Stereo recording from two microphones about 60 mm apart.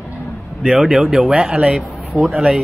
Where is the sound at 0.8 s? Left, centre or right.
Centre.